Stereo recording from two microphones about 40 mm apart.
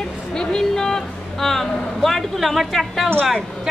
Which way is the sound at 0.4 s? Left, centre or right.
Centre.